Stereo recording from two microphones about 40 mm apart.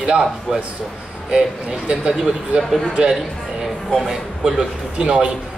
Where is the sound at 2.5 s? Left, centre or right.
Centre.